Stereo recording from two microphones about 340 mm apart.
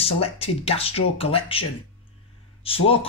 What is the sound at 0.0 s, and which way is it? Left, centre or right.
Speech, centre.